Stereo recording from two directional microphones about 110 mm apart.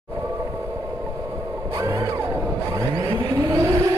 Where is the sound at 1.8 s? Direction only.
30° right (ahead or behind).